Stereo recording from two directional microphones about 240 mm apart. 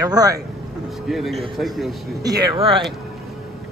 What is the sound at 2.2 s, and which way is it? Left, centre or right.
Speech, centre.